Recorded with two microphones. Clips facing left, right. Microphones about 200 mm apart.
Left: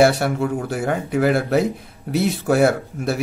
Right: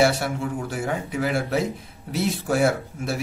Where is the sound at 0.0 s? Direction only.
60° left (ahead or behind).